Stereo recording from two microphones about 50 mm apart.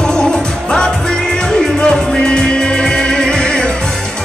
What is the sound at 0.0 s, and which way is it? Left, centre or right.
Music, centre.